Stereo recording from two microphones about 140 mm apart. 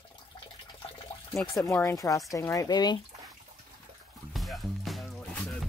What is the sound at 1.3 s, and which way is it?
Speech, 5° left (ahead or behind).